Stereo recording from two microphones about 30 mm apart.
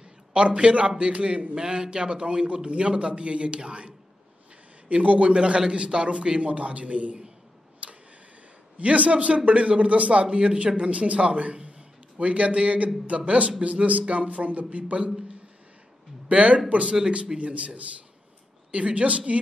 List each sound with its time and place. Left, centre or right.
0.3 s a man's voice: right
1.6 s a man's voice: right
4.9 s speech: right
5.2 s a man's voice: right
6.4 s speech: right
7.8 s tick-tock: right
8.7 s speech: right
9.3 s a man's voice: right
9.6 s speech: right
10.3 s speech: right
10.8 s speech: right
12.2 s speech: right
16.3 s speech: right